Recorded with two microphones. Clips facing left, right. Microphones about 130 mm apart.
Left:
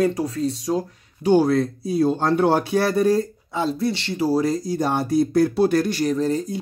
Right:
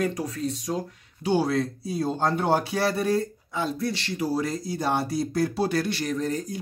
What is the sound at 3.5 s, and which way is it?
Speech, 25° left (ahead or behind).